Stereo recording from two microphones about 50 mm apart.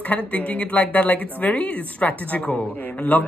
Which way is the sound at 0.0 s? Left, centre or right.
Left.